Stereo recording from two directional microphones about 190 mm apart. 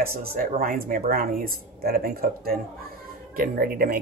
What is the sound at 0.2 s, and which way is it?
Speech, 50° right (ahead or behind).